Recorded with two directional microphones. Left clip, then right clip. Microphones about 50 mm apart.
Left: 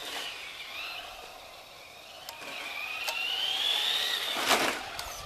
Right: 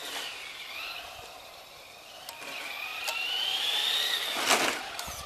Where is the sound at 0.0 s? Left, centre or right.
Centre.